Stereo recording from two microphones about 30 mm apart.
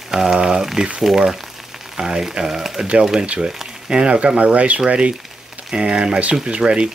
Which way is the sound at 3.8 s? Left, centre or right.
Right.